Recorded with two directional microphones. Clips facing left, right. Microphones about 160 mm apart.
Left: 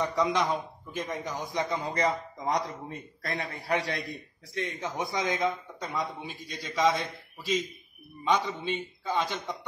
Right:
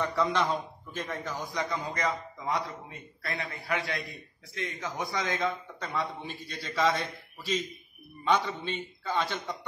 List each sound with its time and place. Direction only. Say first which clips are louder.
0.0 s a man's voice: left 1 dB; 15° left (ahead or behind)
1.9 s a man's voice: left 3 dB; 35° left (ahead or behind); by 9.6 s 10° left (ahead or behind)